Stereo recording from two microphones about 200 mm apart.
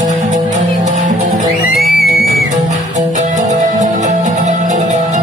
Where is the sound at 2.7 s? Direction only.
35° right (ahead or behind).